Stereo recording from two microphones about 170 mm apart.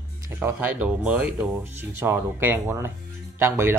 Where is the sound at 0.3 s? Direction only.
15° right (ahead or behind).